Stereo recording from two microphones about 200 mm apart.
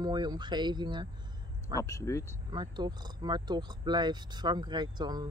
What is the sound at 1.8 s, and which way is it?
Speech, 15° left (ahead or behind).